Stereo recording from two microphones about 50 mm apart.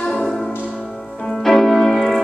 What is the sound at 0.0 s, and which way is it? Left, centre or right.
Music, centre.